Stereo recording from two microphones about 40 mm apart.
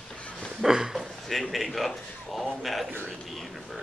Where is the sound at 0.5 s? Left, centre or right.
Centre.